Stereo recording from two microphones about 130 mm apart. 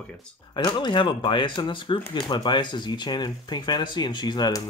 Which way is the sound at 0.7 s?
35° left (ahead or behind).